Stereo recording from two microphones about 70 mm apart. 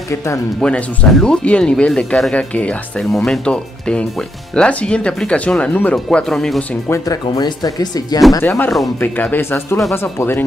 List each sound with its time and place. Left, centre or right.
0.6 s speech: centre
3.0 s speech: centre
6.0 s speech: centre
7.1 s speech: left
8.4 s speech: left